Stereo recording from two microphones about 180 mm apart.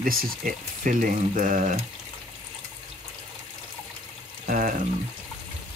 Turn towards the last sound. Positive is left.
turn(degrees=-45)  # may be behind; listen again after turning